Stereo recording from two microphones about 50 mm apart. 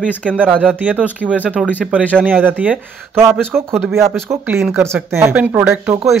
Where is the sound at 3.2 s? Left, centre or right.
Right.